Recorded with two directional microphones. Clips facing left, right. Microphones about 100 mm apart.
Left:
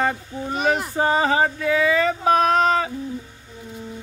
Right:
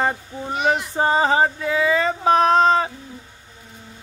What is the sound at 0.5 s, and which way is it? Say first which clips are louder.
Speech: right 1 dB; 40° left (ahead or behind).